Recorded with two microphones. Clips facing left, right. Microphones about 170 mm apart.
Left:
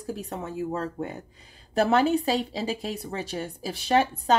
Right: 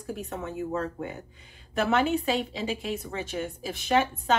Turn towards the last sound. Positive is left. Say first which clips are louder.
# left 2 dB
turn(degrees=35)  # may be behind; listen again after turning